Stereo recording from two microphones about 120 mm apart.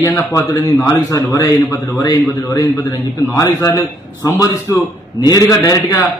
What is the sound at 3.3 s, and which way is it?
A man's voice, 30° left (ahead or behind).